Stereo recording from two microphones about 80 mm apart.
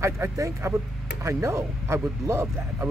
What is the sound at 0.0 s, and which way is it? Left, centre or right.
Speech, right.